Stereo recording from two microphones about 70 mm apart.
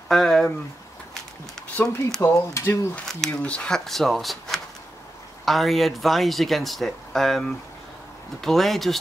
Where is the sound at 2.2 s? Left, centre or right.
Left.